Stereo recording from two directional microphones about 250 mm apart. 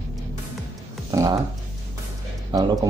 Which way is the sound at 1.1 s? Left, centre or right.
Centre.